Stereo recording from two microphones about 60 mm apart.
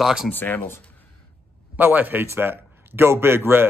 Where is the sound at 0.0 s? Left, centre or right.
Centre.